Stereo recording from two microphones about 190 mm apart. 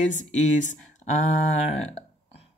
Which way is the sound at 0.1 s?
40° left (ahead or behind).